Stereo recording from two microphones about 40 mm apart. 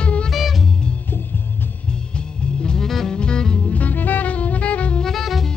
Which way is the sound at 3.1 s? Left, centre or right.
Left.